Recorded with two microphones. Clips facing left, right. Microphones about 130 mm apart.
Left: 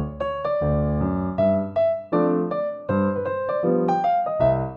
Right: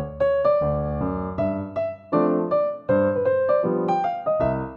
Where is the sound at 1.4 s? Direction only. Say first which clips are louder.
Left 7 dB; 90° left.